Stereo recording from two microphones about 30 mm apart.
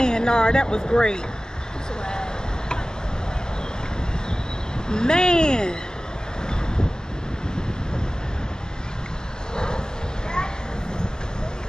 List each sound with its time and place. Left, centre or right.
0.0 s speech: left
4.8 s speech: left